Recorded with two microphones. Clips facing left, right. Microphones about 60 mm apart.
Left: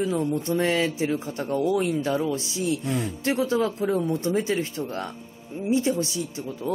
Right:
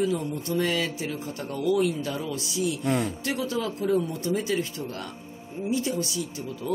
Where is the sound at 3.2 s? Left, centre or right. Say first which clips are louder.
Left 5 dB; left.